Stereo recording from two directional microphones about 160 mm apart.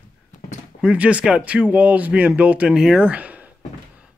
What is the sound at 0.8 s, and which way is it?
Speech, 10° right (ahead or behind).